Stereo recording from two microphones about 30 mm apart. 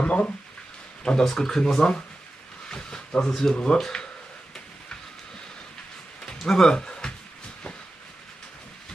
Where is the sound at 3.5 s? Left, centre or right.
Left.